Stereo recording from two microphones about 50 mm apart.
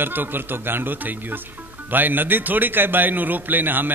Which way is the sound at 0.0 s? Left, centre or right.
Right.